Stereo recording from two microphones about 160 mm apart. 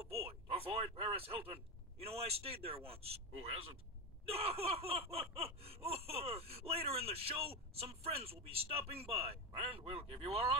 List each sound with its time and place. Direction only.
0.0 s speech: 40° right (ahead or behind)